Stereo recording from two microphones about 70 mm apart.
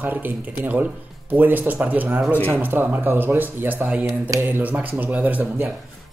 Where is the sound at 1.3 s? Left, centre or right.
Right.